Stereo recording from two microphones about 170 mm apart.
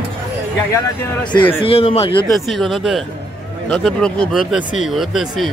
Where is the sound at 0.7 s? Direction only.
25° left (ahead or behind).